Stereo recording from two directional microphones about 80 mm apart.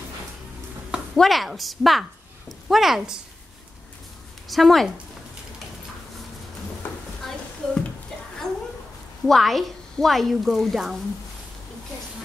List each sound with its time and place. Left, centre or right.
1.1 s a woman's voice: centre
4.5 s a woman's voice: centre
7.2 s a sound: centre
9.2 s a woman's voice: centre